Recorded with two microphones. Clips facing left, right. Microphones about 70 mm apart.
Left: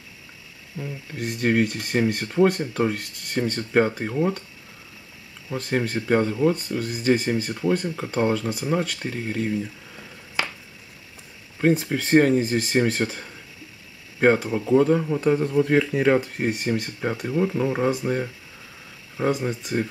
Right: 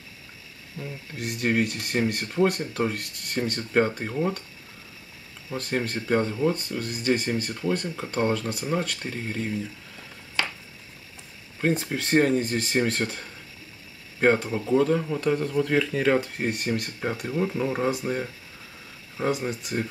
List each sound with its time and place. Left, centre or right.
0.7 s speech: centre
5.5 s speech: centre
11.6 s speech: centre